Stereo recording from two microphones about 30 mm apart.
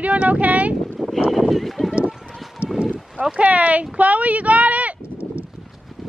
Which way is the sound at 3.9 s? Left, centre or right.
Right.